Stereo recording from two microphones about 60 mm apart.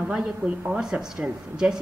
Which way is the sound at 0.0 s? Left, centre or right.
Centre.